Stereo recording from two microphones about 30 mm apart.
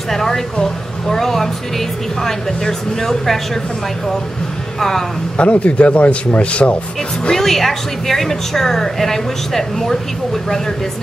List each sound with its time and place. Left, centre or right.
0.1 s a woman's voice: centre
4.7 s a woman's voice: centre
5.4 s speech: left
7.3 s a woman's voice: centre